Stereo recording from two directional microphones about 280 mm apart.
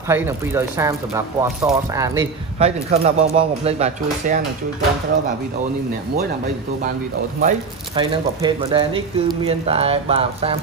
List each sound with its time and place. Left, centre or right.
0.1 s speech: centre
2.6 s speech: right
7.4 s speech: centre